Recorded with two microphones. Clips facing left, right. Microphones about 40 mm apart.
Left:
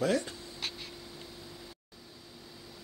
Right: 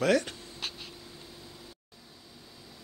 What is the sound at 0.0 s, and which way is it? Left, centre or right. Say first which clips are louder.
Speech: right 4 dB; right.